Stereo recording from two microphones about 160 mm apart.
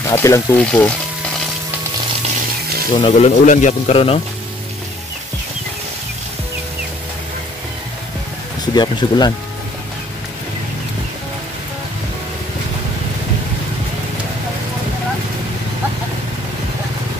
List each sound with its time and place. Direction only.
0.1 s speech: 20° left (ahead or behind)
0.6 s speech: 5° left (ahead or behind)
2.9 s speech: 35° left (ahead or behind)
8.7 s speech: 25° left (ahead or behind)